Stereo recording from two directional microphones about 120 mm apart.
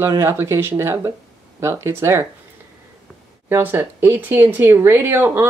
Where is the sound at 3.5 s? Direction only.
20° right (ahead or behind).